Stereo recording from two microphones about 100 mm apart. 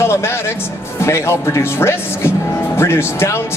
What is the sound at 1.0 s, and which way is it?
Speech, 25° left (ahead or behind).